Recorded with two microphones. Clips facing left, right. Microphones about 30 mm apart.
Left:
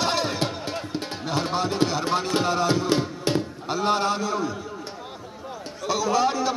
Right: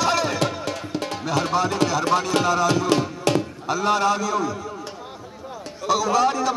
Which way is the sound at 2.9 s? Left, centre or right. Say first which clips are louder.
Right 3 dB; centre.